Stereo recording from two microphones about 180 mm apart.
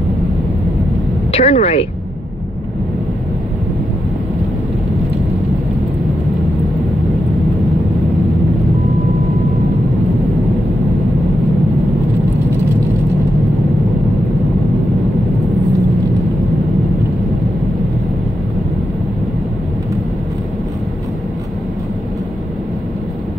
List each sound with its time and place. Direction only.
1.3 s speech: 35° left (ahead or behind)